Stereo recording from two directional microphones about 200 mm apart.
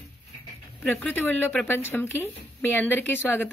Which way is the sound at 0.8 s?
10° left (ahead or behind).